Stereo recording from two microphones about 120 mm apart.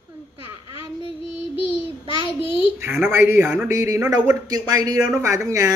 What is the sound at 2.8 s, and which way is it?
Speech, 20° right (ahead or behind).